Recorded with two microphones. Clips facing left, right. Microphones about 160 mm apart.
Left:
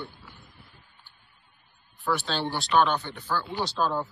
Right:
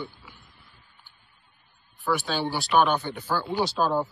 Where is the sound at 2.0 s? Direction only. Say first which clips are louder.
Right 2 dB; centre (ahead or behind).